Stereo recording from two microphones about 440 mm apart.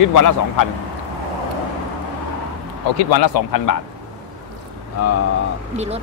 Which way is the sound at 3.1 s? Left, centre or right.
Left.